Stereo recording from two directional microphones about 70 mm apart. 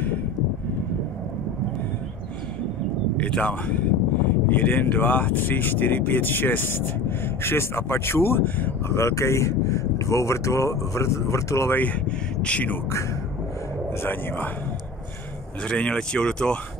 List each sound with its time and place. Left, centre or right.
3.2 s speech: centre
8.8 s speech: left
11.7 s speech: left
14.0 s speech: left
15.6 s speech: centre